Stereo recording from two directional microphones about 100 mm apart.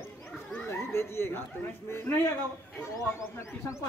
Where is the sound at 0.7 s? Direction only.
25° left (ahead or behind).